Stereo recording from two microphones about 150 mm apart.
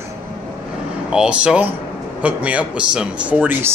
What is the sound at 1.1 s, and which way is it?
Speech, 5° right (ahead or behind).